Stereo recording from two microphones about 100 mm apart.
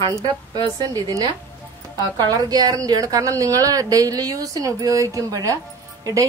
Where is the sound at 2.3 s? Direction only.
40° right (ahead or behind).